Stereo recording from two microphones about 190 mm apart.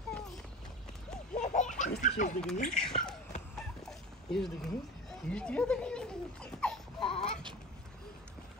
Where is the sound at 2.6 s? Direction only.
5° left (ahead or behind).